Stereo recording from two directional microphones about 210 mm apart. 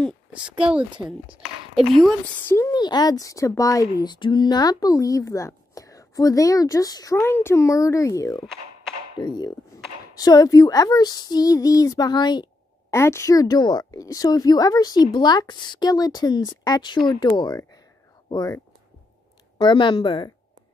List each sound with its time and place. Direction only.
1.8 s speech: centre (ahead or behind); by 18.6 s 20° left (ahead or behind)
19.6 s speech: 20° left (ahead or behind)